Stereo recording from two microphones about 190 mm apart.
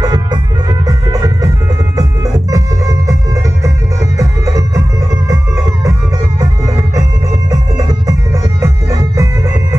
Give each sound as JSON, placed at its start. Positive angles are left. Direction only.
{"t": 0.0, "sound": "music", "side_deg": -20}
{"t": 2.5, "sound": "music", "side_deg": -15}
{"t": 6.4, "sound": "music", "side_deg": -20}